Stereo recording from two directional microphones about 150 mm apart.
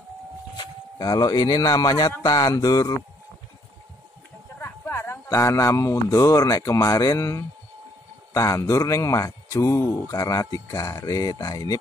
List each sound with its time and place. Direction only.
0.6 s a man's voice: 30° left (ahead or behind)
4.6 s a man's voice: 15° left (ahead or behind)